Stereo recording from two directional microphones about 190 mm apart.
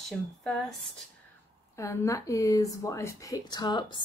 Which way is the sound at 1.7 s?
15° left (ahead or behind).